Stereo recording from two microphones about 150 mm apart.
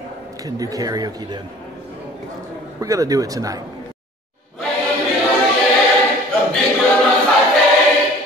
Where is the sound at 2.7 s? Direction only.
20° right (ahead or behind).